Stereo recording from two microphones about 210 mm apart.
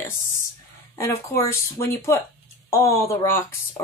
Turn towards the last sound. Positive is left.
turn(degrees=10)  # may be behind; listen again after turning